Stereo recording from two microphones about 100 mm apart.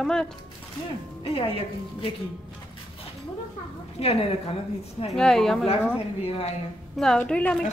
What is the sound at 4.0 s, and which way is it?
Speech, 80° left.